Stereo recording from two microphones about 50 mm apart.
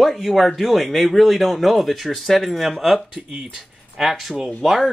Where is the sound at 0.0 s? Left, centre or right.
Centre.